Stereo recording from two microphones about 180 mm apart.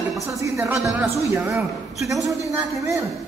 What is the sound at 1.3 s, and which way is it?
Speech, 15° right (ahead or behind).